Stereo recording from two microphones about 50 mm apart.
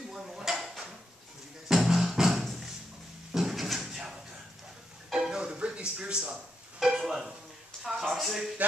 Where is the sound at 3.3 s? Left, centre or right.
Centre.